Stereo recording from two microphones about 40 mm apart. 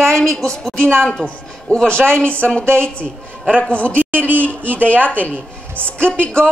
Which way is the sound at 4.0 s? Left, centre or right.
Right.